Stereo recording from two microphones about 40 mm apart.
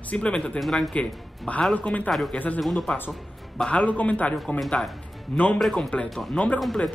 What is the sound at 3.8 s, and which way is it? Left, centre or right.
Speech, left.